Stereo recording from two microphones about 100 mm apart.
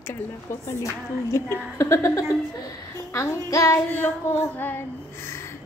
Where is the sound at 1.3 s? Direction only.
30° left (ahead or behind).